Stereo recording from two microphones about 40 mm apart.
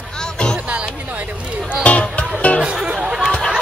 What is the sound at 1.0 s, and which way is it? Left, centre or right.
Speech, right.